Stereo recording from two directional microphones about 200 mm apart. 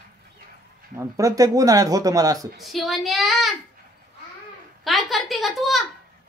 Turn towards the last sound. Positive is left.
turn(degrees=0)  # may be behind; listen again after turning